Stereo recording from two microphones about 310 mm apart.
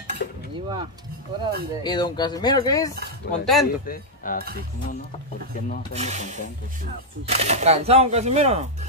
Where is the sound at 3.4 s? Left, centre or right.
Centre.